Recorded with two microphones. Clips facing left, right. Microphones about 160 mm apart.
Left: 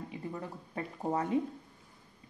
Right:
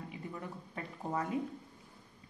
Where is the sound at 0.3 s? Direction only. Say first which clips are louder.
Left 3 dB; 30° left (ahead or behind).